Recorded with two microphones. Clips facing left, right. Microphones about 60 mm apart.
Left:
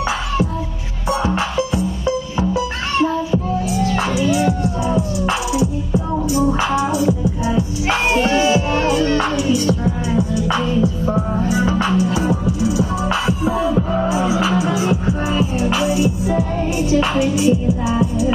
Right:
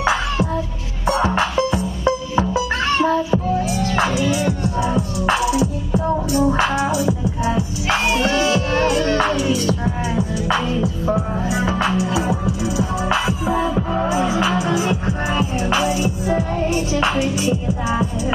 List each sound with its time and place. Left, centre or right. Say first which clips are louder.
8.5 s music: left 1 dB; right
9.8 s music: left 3 dB; centre
10.8 s music: left 2 dB; centre
17.2 s music: left 4 dB; centre